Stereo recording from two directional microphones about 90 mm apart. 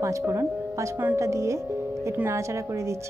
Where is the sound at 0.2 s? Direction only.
25° right (ahead or behind).